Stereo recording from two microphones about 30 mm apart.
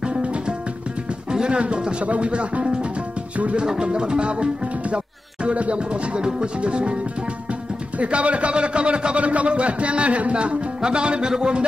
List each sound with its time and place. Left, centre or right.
0.1 s music: right
1.3 s music: right
1.6 s a man's voice: right
2.0 s music: right
3.8 s a man's voice: right
4.9 s music: right
6.2 s a man's voice: right
8.0 s a man's voice: right
9.2 s music: right
10.3 s a man's voice: right
11.3 s music: right